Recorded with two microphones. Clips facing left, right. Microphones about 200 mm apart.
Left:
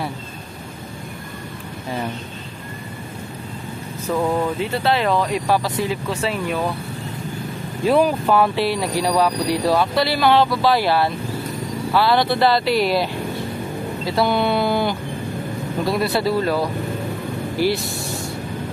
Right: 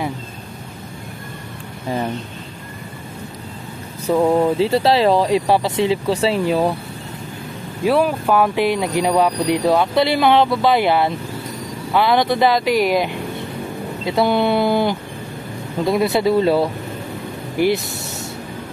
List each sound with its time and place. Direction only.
4.2 s speech: 30° right (ahead or behind)
7.8 s speech: 10° right (ahead or behind)
17.9 s a sound: 20° right (ahead or behind)